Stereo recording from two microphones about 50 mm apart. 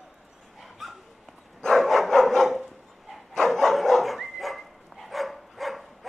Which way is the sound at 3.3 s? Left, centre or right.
Centre.